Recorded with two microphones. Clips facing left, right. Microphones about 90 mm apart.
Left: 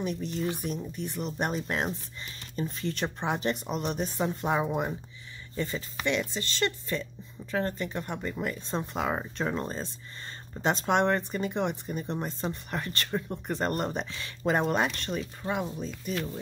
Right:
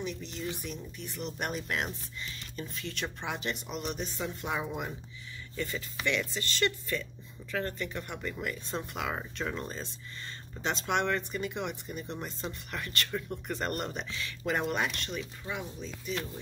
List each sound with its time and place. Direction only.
0.0 s speech: 45° left (ahead or behind)